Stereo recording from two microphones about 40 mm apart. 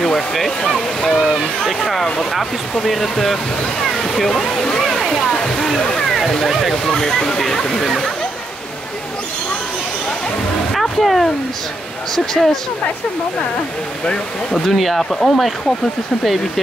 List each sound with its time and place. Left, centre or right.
0.0 s waterfall: centre
0.7 s speech: centre
6.4 s speech: centre
6.7 s speech: centre
10.7 s a sound: centre
12.4 s speech: centre
14.0 s speech: centre
14.7 s speech: centre